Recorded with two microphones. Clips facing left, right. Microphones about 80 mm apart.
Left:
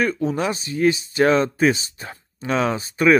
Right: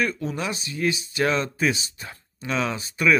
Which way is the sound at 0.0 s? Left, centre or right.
Left.